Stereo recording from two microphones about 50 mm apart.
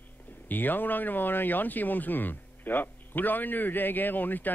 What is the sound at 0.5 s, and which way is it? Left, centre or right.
Speech, left.